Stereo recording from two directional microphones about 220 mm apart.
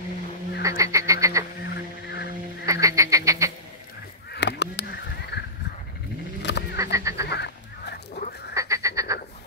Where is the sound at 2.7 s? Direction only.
15° right (ahead or behind).